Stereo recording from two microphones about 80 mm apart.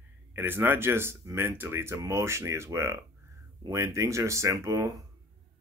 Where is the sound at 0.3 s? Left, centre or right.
Right.